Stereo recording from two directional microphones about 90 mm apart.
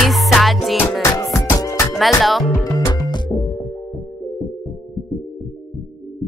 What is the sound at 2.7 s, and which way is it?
Music, 40° left (ahead or behind).